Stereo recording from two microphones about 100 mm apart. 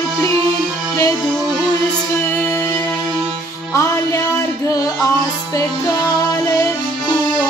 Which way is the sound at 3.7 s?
30° left (ahead or behind).